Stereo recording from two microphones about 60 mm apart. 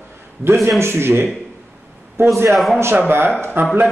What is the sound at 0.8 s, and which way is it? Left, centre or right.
Speech, right.